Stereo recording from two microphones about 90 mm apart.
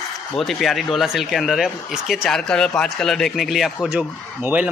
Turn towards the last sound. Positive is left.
turn(degrees=-20)  # may be behind; listen again after turning